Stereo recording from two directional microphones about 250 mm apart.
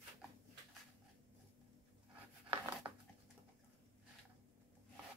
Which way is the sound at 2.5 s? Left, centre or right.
Centre.